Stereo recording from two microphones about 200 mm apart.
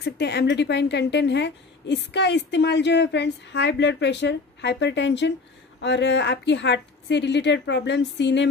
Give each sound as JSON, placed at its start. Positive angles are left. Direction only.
{"t": 0.0, "sound": "a woman's voice", "side_deg": 55}